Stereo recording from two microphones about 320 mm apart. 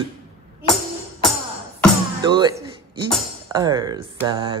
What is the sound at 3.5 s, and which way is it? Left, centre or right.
A woman's voice, centre.